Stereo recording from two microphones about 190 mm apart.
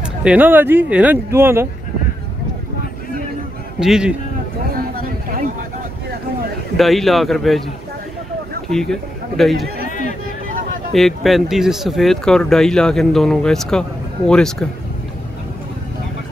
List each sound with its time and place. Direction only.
0.2 s speech: 5° right (ahead or behind)
3.8 s speech: 5° right (ahead or behind)
4.7 s a sound: 50° right (ahead or behind)
6.8 s speech: centre (ahead or behind)
8.6 s speech: 5° left (ahead or behind)
10.9 s speech: centre (ahead or behind)